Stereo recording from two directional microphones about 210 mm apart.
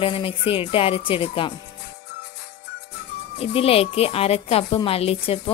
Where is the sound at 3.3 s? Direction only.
30° left (ahead or behind).